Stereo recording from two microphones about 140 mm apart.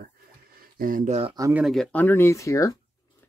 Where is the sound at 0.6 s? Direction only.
90° right.